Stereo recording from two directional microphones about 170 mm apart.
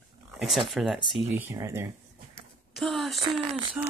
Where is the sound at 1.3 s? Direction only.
15° right (ahead or behind).